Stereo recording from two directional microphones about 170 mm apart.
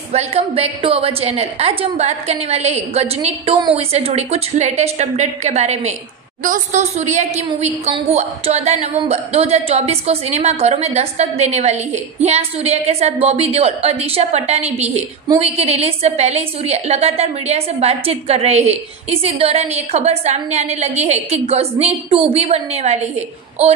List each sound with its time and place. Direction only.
0.1 s a woman's voice: 35° right (ahead or behind)